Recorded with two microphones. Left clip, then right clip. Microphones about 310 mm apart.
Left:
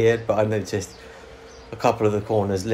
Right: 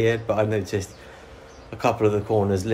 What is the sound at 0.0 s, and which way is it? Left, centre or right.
Speech, centre.